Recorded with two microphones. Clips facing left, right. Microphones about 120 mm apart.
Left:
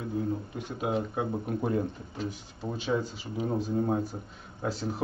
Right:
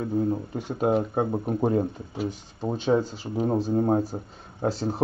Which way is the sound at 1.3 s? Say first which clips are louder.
Right 4 dB; 30° right (ahead or behind).